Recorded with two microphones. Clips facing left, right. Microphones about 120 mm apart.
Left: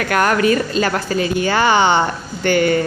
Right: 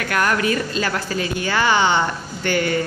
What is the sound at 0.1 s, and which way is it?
Speech, 55° left (ahead or behind).